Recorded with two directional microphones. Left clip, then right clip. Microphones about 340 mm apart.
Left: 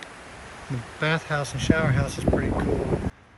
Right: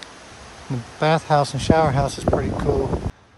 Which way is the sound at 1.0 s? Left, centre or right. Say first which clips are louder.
Right 8 dB; centre.